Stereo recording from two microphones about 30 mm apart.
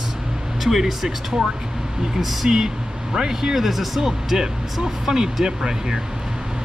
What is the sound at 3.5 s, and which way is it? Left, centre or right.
Speech, centre.